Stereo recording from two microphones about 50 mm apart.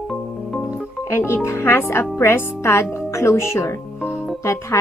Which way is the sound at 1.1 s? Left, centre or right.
Left.